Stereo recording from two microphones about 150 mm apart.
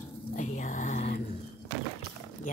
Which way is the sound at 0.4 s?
55° left (ahead or behind).